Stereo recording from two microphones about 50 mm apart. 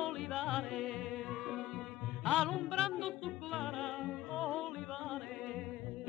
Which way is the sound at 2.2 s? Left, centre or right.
Centre.